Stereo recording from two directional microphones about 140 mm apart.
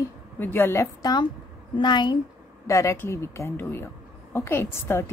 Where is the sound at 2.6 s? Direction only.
20° left (ahead or behind).